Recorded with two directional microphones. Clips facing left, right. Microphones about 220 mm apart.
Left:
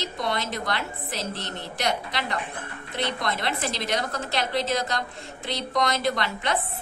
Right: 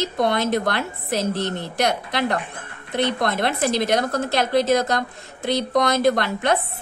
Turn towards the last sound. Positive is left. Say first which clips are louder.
# right 7 dB
turn(degrees=-50)  # may be behind; listen again after turning